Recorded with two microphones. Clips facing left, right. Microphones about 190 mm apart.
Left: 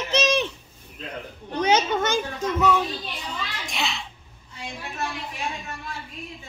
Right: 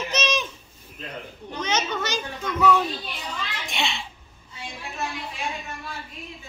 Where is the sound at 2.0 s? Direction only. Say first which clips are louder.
Left 5 dB; 50° left (ahead or behind).